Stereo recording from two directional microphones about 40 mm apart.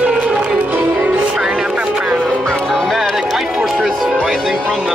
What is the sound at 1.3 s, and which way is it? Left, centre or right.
Music, centre.